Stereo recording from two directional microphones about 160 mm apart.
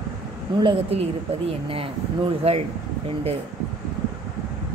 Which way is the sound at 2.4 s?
40° right (ahead or behind).